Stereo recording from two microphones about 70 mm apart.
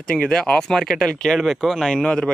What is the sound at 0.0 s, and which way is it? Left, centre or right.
Speech, centre.